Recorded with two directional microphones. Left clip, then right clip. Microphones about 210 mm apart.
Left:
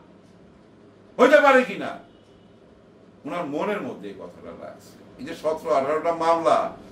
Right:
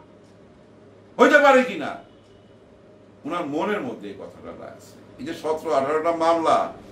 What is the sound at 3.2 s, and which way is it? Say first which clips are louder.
Speech: right 2 dB; 5° right (ahead or behind).